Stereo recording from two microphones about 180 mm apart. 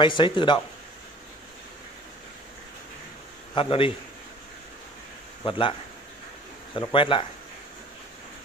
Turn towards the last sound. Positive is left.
turn(degrees=30)  # may be behind; listen again after turning